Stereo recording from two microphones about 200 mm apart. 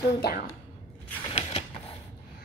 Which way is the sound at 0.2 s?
50° left (ahead or behind).